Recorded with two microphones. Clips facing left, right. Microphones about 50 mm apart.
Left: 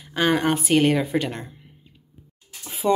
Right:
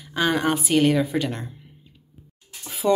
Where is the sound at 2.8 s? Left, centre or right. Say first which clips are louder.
Even; left.